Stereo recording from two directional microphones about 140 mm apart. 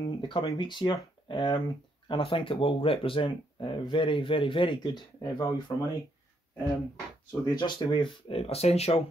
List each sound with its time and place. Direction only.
0.0 s speech: 35° left (ahead or behind)
7.4 s speech: 30° left (ahead or behind)
8.3 s speech: 45° left (ahead or behind)